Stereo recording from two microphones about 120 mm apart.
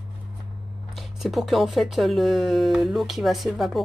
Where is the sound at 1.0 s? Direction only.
Centre (ahead or behind).